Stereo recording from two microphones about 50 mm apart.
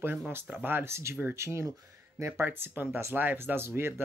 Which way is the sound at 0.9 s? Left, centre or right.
Right.